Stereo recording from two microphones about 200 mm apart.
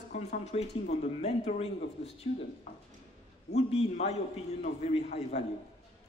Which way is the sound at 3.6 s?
30° left (ahead or behind).